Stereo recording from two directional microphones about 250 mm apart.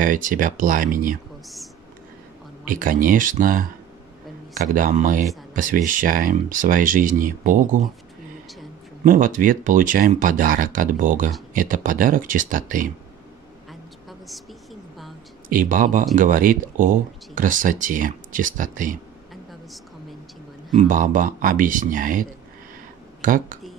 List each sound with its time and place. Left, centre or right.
0.0 s speech: right
2.7 s speech: right
9.0 s speech: right
13.7 s vehicle: centre
15.5 s speech: right
20.7 s speech: right